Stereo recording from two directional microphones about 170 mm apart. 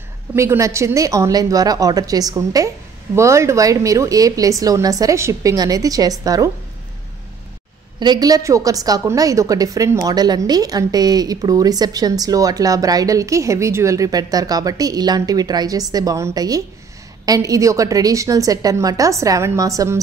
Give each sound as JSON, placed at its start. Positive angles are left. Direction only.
{"t": 0.3, "sound": "a woman's voice", "side_deg": -15}
{"t": 8.0, "sound": "a woman's voice", "side_deg": -25}